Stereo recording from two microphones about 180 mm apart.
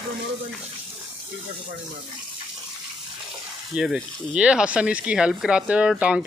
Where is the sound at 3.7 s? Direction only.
5° right (ahead or behind).